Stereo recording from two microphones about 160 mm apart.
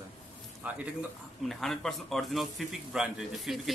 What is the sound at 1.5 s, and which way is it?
A man's voice, centre (ahead or behind).